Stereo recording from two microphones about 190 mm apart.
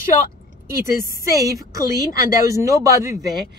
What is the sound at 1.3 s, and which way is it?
Speech, 15° right (ahead or behind).